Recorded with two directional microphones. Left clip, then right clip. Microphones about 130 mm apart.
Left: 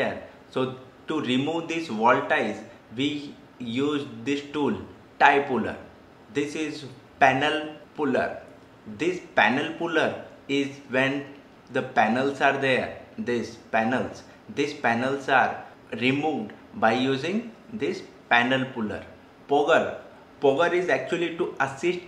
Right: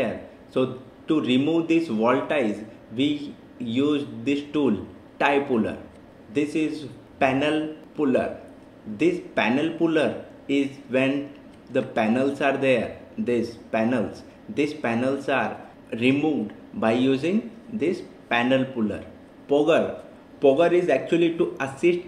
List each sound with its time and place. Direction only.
0.0 s a man's voice: 15° right (ahead or behind)